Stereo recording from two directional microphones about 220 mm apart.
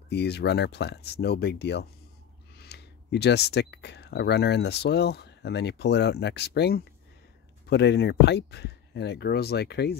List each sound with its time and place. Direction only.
0.1 s speech: 50° left (ahead or behind)